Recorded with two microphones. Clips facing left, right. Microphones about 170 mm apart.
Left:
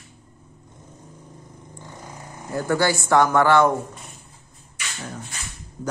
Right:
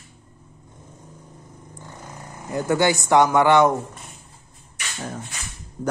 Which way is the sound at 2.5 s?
20° right (ahead or behind).